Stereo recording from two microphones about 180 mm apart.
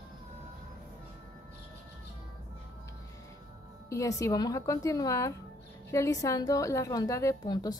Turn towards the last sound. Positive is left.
turn(degrees=20)  # may be behind; listen again after turning